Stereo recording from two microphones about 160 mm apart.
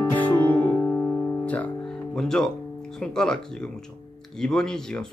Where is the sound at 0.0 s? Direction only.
10° left (ahead or behind).